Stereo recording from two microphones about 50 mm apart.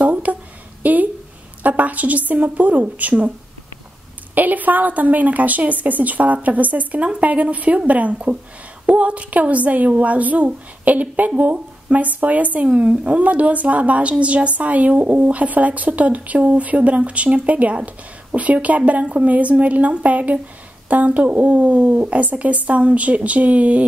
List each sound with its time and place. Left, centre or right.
0.0 s a sound: right
0.8 s a woman's voice: right
4.4 s a woman's voice: right